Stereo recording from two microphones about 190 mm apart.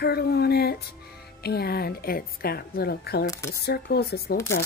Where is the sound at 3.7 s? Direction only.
55° left (ahead or behind).